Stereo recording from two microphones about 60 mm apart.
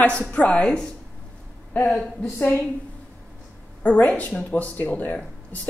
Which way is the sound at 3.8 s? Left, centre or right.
Left.